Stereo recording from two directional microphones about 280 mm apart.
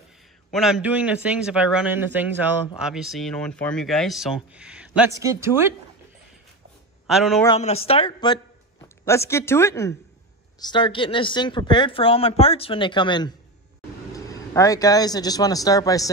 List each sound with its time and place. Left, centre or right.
0.5 s speech: centre
7.1 s speech: centre
7.4 s a man's voice: left